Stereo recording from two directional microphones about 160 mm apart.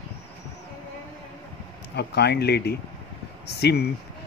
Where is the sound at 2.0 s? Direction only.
90° left.